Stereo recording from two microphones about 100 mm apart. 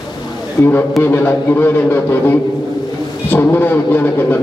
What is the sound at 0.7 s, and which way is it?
A man's voice, 20° left (ahead or behind).